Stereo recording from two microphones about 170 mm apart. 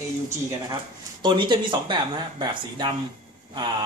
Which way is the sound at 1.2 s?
25° right (ahead or behind).